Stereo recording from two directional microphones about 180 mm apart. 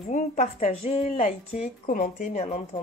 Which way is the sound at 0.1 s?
40° left (ahead or behind).